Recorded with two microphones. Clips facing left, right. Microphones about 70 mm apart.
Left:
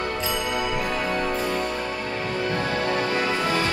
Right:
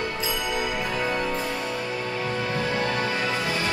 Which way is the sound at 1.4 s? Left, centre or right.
Left.